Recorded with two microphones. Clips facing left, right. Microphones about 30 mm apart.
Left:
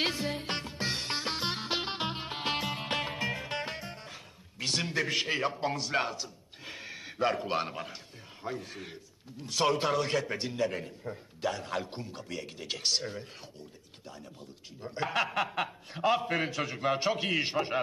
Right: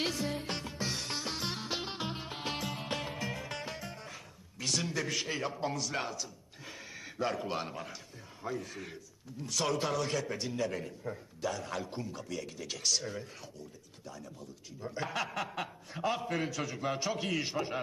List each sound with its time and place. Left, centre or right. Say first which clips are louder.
0.0 s music: left 3 dB; left
8.5 s a man's voice: even; left
14.8 s a man's voice: left 5 dB; left